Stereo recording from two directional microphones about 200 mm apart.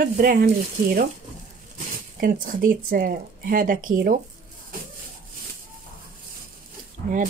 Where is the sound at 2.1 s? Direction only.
45° right (ahead or behind).